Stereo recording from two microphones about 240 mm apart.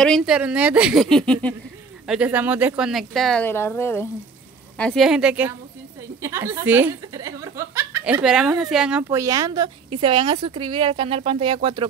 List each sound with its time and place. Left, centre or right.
0.0 s speech: centre; by 11.9 s right